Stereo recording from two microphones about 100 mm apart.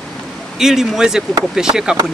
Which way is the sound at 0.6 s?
5° right (ahead or behind).